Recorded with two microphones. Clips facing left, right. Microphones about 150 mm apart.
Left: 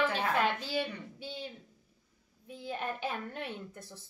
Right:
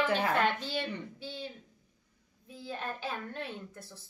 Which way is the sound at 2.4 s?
20° left (ahead or behind).